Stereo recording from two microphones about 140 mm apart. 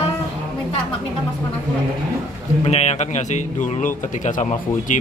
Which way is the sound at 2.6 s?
50° left (ahead or behind).